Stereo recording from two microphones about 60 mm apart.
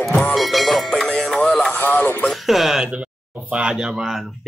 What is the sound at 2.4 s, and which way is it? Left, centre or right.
Speech, centre.